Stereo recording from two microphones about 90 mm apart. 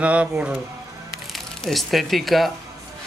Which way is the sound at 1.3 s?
Centre (ahead or behind).